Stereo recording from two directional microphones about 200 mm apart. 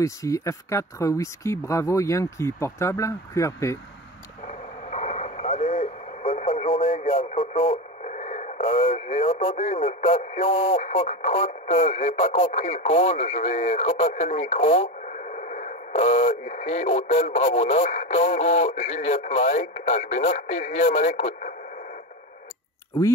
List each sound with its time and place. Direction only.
0.0 s speech: 15° left (ahead or behind)
4.5 s radio: 35° left (ahead or behind)
10.8 s speech: 40° left (ahead or behind)